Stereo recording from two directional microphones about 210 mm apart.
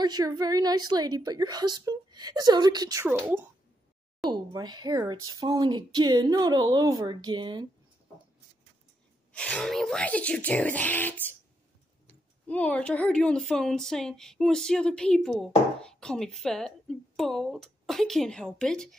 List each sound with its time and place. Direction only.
0.0 s a woman's voice: 20° right (ahead or behind)
9.3 s speech: 5° left (ahead or behind)